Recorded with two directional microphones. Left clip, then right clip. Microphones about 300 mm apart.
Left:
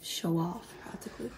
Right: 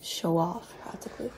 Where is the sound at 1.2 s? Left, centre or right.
Centre.